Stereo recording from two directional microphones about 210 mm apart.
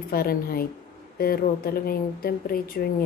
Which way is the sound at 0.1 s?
45° left (ahead or behind).